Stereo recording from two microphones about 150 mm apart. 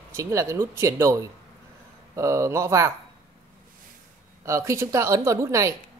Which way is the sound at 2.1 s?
20° right (ahead or behind).